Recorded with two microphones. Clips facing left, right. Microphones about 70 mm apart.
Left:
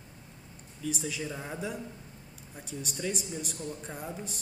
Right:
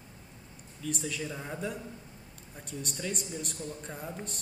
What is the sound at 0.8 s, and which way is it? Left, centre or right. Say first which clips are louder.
A man's voice: left 1 dB; centre.